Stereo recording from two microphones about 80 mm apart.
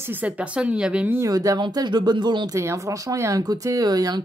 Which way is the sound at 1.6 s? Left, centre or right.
Right.